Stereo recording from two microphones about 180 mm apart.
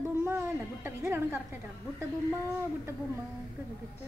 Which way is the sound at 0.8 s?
10° right (ahead or behind).